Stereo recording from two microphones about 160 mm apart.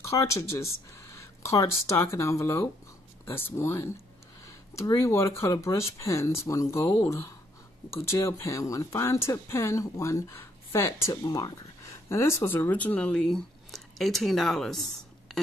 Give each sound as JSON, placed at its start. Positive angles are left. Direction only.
{"t": 0.1, "sound": "speech", "side_deg": 20}